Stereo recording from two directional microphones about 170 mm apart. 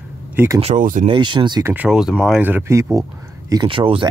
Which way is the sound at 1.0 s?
25° right (ahead or behind).